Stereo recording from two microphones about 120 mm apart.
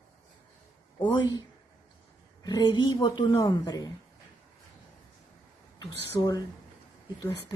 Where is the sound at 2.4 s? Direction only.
35° left (ahead or behind).